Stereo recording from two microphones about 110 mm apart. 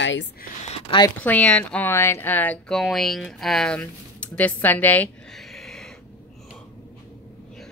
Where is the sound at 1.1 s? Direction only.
15° left (ahead or behind).